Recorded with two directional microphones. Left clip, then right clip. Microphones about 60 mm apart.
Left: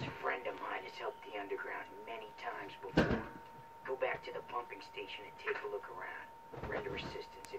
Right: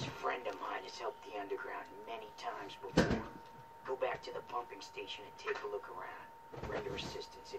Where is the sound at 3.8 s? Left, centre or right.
Right.